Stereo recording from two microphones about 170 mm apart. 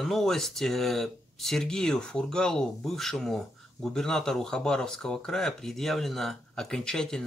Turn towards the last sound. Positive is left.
turn(degrees=5)  # may be behind; listen again after turning